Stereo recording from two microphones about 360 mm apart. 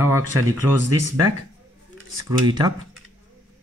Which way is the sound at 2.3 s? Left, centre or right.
Centre.